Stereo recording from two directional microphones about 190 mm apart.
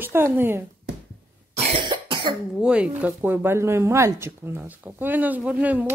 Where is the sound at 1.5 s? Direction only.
25° right (ahead or behind).